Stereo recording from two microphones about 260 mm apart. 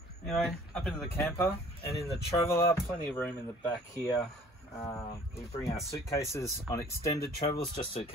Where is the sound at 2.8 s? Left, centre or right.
Centre.